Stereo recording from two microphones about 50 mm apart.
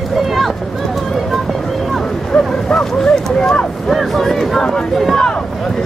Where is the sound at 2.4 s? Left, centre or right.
Centre.